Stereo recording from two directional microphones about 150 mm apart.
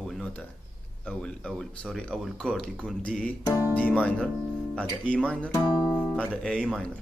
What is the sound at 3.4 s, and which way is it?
Speech, 20° left (ahead or behind).